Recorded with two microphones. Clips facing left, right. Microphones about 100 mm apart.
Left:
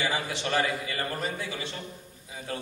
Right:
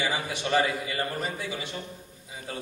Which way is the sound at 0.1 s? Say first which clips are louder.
Right 2 dB; 15° right (ahead or behind).